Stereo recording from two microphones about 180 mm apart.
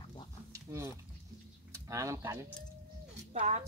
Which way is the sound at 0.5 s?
15° right (ahead or behind).